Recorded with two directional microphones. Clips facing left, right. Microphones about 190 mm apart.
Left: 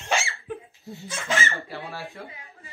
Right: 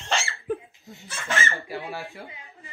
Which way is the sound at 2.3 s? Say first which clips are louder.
Even; 15° right (ahead or behind).